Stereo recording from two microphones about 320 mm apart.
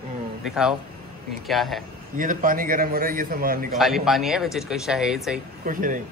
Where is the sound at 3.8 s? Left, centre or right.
Centre.